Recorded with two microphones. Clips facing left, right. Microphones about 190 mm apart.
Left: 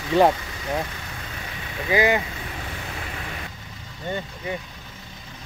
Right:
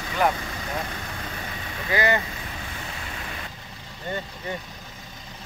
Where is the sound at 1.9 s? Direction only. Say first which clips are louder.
Left 3 dB; 15° left (ahead or behind).